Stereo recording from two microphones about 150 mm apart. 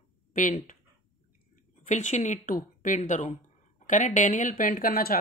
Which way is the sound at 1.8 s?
55° left (ahead or behind).